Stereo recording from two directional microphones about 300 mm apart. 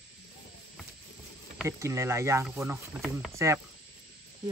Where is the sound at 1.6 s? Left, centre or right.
Centre.